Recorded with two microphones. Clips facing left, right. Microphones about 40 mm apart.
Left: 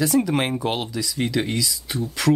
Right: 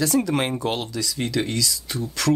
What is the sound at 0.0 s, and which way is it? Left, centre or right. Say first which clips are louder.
Speech: left 1 dB; centre.